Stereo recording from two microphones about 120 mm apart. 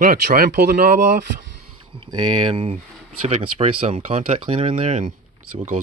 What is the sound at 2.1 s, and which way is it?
Speech, 35° right (ahead or behind).